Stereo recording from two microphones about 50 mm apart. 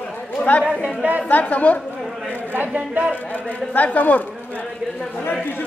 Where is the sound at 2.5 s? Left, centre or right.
Right.